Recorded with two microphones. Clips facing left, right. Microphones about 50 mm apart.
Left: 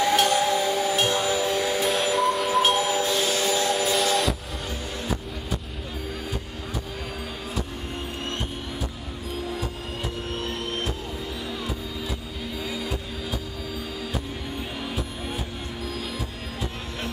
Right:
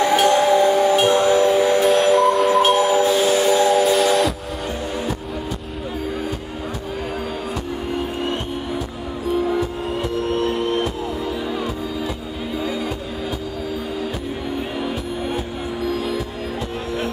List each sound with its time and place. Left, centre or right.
0.0 s music: centre
3.0 s train: centre
10.3 s music: right